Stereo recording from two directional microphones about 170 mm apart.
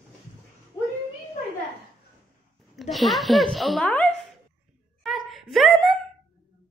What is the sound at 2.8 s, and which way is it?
Speech, centre (ahead or behind).